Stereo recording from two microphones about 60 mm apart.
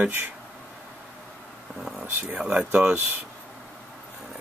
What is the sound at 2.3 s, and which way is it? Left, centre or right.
Speech, centre.